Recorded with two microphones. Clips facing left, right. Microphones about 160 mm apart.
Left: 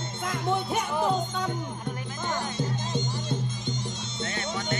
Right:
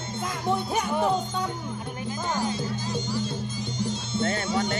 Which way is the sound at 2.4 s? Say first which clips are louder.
Right 2 dB; 20° left (ahead or behind).